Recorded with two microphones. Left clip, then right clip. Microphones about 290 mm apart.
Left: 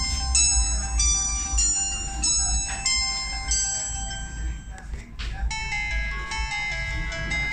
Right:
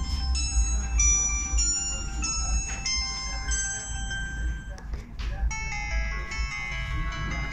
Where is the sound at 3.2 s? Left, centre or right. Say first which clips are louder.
Left 4 dB; centre.